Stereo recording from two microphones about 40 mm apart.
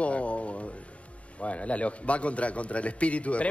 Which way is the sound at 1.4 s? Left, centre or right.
Left.